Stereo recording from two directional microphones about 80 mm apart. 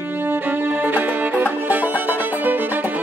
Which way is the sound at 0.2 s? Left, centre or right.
Right.